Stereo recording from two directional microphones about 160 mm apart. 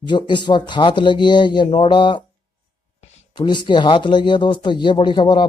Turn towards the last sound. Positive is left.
turn(degrees=30)  # may be behind; listen again after turning